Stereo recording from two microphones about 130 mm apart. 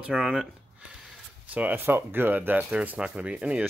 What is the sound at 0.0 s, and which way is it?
Speech, 5° right (ahead or behind).